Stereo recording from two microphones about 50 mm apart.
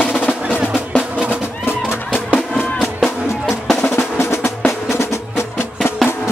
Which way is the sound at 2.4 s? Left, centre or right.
Centre.